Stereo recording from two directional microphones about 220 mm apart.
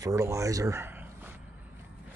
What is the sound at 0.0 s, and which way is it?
Speech, 15° right (ahead or behind).